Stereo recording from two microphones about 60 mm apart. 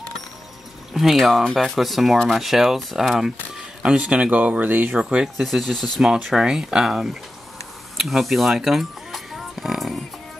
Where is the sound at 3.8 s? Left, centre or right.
Centre.